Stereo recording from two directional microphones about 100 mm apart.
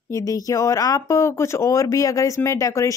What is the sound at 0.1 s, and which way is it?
Speech, 35° left (ahead or behind).